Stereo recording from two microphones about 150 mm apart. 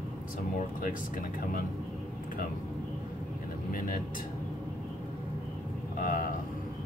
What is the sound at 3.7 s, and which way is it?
Vehicle, 70° left (ahead or behind).